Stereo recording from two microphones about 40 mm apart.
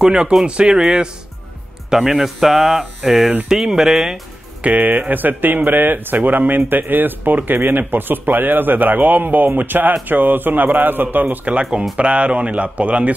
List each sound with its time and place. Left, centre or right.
0.0 s speech: centre
1.9 s speech: centre
4.6 s speech: right
5.1 s a man's voice: right
12.0 s speech: right